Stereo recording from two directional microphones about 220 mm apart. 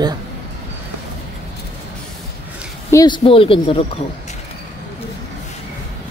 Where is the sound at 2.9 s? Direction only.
20° left (ahead or behind).